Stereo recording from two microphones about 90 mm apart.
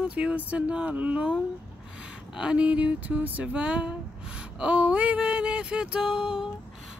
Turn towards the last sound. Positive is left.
turn(degrees=-10)  # may be behind; listen again after turning